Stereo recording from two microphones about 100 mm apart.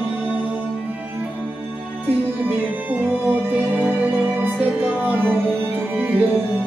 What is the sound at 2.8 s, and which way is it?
Music, 20° right (ahead or behind).